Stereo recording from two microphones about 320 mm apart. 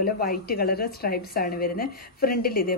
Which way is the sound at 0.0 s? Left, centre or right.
Left.